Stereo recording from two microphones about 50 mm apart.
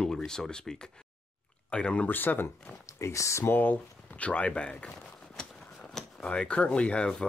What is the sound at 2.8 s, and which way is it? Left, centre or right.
Speech, left.